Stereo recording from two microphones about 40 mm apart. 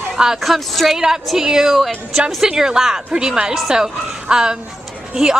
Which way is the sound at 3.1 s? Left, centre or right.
Right.